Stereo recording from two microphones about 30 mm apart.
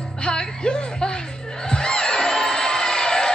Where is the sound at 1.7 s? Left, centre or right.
Left.